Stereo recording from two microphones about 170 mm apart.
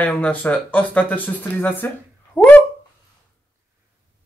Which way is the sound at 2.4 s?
10° left (ahead or behind).